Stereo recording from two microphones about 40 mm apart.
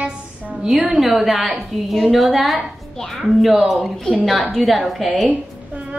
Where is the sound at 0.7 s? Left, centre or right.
Centre.